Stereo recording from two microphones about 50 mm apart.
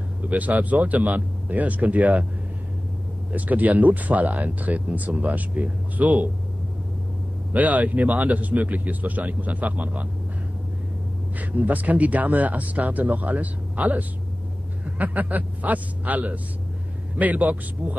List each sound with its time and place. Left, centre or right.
0.2 s speech: right
3.3 s speech: right
7.5 s speech: right
11.3 s speech: right